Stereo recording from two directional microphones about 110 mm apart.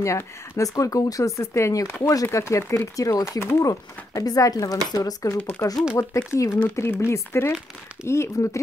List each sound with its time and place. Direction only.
0.0 s speech: 25° left (ahead or behind)